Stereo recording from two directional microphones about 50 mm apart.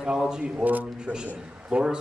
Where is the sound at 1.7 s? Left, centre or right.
Centre.